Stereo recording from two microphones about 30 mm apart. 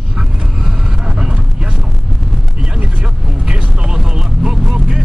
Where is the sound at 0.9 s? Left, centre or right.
Centre; by 3.8 s right.